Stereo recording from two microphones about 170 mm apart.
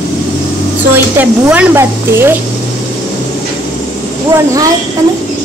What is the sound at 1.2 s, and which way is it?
Speech, 10° right (ahead or behind).